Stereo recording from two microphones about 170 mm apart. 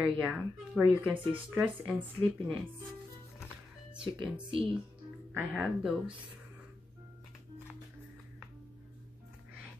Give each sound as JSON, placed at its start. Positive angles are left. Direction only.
{"t": 0.0, "sound": "speech", "side_deg": -5}
{"t": 4.0, "sound": "speech", "side_deg": -30}
{"t": 5.3, "sound": "speech", "side_deg": -5}